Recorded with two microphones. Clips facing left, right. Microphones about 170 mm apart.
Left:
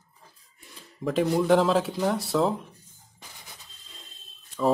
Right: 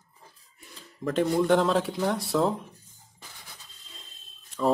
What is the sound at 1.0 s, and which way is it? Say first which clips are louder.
Speech: even; 5° left (ahead or behind).